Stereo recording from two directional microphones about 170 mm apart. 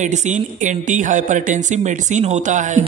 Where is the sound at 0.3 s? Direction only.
50° right (ahead or behind).